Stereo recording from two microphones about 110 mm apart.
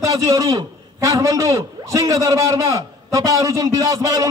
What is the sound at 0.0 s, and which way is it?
A man's voice, 30° right (ahead or behind).